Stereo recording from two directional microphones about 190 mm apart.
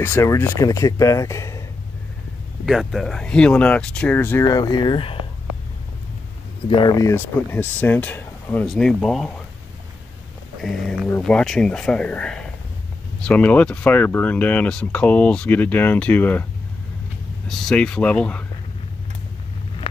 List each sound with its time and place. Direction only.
0.0 s speech: 10° left (ahead or behind)
2.6 s speech: centre (ahead or behind); by 5.1 s 25° left (ahead or behind)
6.7 s speech: 20° left (ahead or behind); by 9.3 s centre (ahead or behind)
10.6 s speech: centre (ahead or behind)
17.5 s speech: 5° left (ahead or behind)